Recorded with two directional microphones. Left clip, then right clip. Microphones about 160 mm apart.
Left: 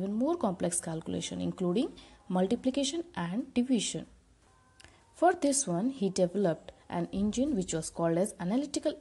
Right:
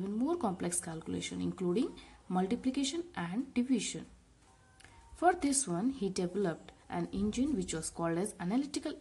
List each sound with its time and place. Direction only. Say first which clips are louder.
0.2 s speech: left 4 dB; 20° left (ahead or behind)
5.2 s speech: left 3 dB; 30° left (ahead or behind)